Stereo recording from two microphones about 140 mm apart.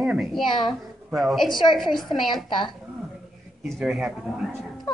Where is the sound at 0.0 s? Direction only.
5° right (ahead or behind).